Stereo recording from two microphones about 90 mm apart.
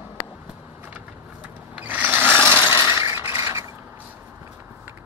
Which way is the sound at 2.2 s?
10° left (ahead or behind).